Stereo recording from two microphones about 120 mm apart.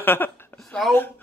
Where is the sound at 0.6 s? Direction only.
Centre (ahead or behind).